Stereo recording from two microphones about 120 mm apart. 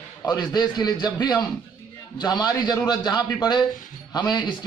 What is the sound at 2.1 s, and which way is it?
A man's voice, 35° left (ahead or behind).